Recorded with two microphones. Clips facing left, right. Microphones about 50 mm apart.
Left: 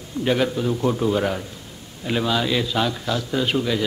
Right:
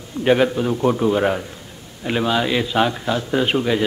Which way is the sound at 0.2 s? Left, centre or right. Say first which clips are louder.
Right 4 dB; right.